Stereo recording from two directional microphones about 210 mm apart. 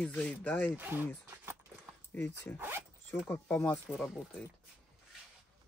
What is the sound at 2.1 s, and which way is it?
Speech, 10° left (ahead or behind).